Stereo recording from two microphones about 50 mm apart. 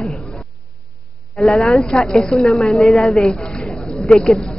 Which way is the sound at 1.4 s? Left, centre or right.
Centre.